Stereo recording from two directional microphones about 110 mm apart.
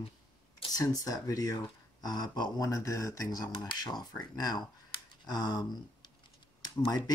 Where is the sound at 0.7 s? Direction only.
35° left (ahead or behind).